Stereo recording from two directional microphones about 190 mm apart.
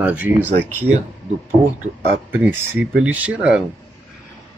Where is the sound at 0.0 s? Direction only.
10° right (ahead or behind).